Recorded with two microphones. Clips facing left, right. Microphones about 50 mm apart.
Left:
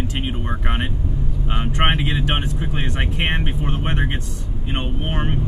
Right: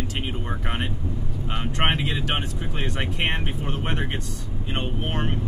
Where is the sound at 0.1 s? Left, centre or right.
Left.